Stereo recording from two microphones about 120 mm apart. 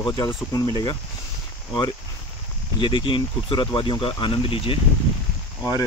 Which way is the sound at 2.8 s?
40° left (ahead or behind).